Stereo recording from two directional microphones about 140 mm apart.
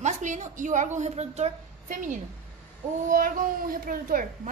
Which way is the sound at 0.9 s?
50° right (ahead or behind).